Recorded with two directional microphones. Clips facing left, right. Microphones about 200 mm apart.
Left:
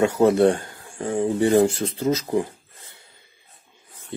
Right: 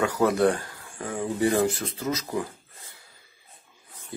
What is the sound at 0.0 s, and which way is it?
Speech, 25° left (ahead or behind).